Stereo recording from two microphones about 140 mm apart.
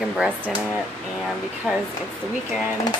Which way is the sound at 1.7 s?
5° right (ahead or behind).